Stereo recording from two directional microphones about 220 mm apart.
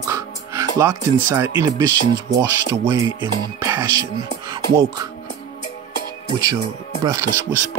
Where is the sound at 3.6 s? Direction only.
15° right (ahead or behind).